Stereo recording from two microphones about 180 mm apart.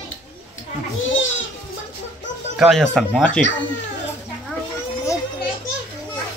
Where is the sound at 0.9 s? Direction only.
90° left.